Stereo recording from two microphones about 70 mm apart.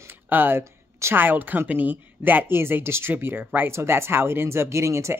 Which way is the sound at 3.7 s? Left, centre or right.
Right.